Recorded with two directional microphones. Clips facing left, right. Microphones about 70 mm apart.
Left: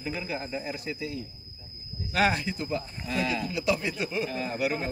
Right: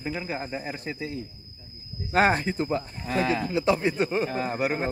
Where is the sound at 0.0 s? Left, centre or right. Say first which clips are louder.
Right 2 dB; right.